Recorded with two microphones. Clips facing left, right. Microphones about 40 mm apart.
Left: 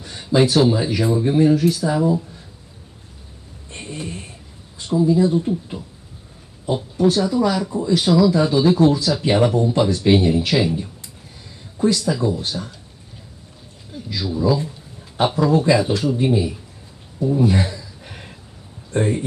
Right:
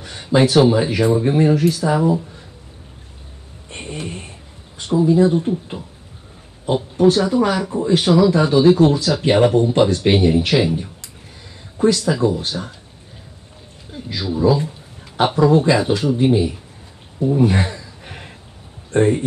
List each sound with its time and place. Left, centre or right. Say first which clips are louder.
0.0 s speech: right 1 dB; right
3.7 s a sound: right 2 dB; right
4.7 s speech: right 2 dB; right
6.6 s speech: right 3 dB; right
13.9 s speech: right 2 dB; right
17.4 s a sound: right 1 dB; right
18.9 s speech: right 5 dB; right